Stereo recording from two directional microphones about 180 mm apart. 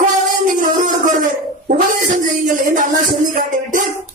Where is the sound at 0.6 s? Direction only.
45° right (ahead or behind).